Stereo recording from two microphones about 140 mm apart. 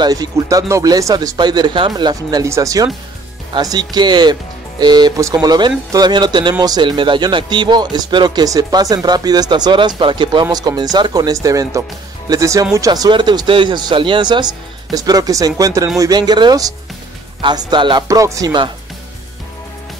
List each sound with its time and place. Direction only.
0.0 s speech: 25° right (ahead or behind)
18.0 s speech: 20° right (ahead or behind)